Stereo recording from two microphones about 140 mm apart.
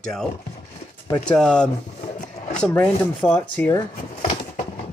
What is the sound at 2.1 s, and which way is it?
Roaring cats, 60° left (ahead or behind).